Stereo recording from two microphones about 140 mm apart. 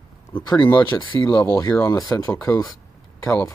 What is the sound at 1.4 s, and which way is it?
Speech, 20° left (ahead or behind).